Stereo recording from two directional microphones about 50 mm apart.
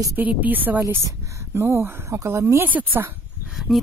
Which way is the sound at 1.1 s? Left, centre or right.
Right.